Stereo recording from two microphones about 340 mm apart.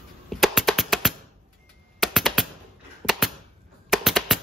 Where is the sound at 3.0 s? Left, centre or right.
Centre.